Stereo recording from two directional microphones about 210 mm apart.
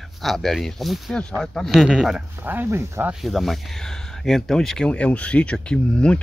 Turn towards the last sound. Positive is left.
turn(degrees=5)  # may be behind; listen again after turning